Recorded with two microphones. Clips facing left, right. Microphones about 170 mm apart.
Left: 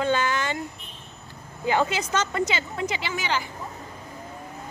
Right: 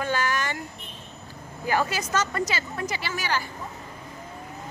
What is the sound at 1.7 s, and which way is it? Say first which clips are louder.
Speech: left 2 dB; 20° left (ahead or behind).